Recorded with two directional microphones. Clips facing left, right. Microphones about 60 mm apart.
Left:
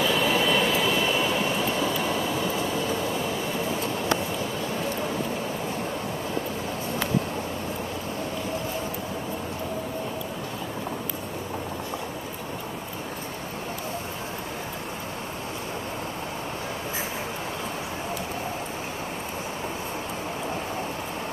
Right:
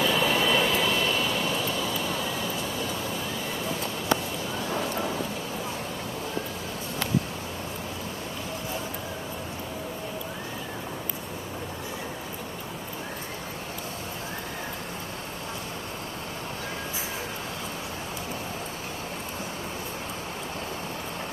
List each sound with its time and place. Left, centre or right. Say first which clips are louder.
0.0 s vehicle: left 1 dB; centre
1.2 s vehicle: left 3 dB; left